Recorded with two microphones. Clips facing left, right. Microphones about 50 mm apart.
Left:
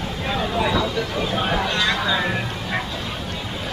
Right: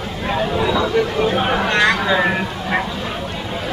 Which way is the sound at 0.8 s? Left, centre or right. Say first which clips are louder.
Right 7 dB; right.